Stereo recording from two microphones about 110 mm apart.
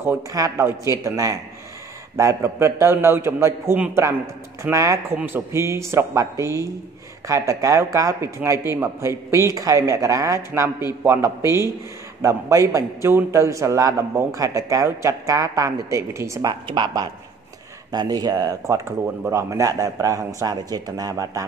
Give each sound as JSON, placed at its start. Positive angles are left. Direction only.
{"t": 0.3, "sound": "a woman's voice", "side_deg": -30}
{"t": 16.6, "sound": "a woman's voice", "side_deg": -45}
{"t": 18.9, "sound": "a man's voice", "side_deg": -20}